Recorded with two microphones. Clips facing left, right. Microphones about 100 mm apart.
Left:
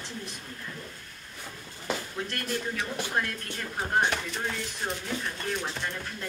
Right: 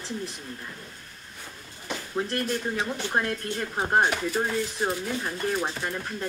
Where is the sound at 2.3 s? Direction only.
30° right (ahead or behind).